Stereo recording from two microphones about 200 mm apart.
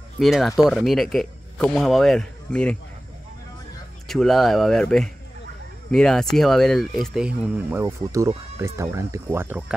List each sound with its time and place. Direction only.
0.2 s speech: centre (ahead or behind)
4.1 s speech: centre (ahead or behind)